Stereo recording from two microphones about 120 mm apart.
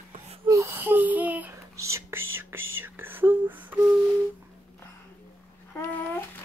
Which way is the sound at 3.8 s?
5° right (ahead or behind).